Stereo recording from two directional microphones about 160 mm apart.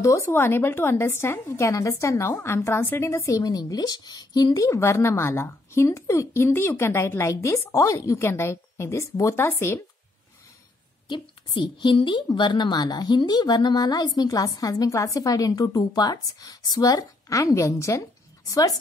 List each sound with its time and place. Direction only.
0.0 s speech: 20° left (ahead or behind)
11.1 s a woman's voice: 30° left (ahead or behind)